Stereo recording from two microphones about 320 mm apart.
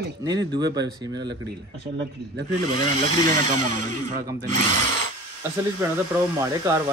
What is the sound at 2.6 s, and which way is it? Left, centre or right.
Speech, right.